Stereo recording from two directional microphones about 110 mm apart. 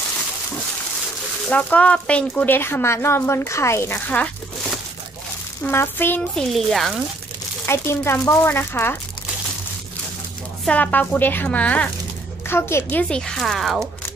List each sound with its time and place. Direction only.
1.5 s speech: 10° left (ahead or behind)
5.7 s speech: 20° left (ahead or behind)
6.3 s speech: centre (ahead or behind)
7.6 s speech: 25° left (ahead or behind)
10.7 s speech: 15° left (ahead or behind)
13.1 s speech: 5° left (ahead or behind)